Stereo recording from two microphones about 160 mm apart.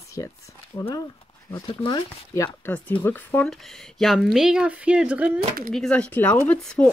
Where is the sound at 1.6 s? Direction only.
30° left (ahead or behind).